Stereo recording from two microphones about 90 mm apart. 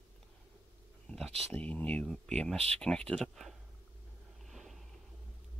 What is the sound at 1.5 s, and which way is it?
Speech, 15° left (ahead or behind).